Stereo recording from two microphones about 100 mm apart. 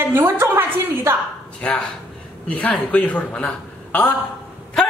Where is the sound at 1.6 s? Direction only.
10° left (ahead or behind).